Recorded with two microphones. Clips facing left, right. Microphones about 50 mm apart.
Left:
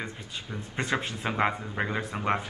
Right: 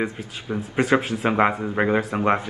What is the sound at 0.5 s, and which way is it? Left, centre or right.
Speech, right.